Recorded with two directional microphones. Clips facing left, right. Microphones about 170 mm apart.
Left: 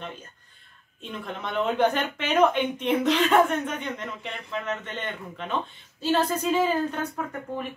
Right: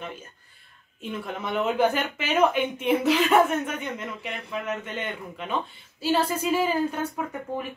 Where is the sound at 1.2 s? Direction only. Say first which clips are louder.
Even; 5° right (ahead or behind).